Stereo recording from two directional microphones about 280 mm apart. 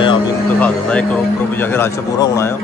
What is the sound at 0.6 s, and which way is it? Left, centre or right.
Speech, centre.